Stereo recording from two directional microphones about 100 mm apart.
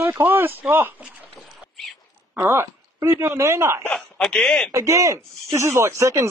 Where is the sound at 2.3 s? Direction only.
25° right (ahead or behind).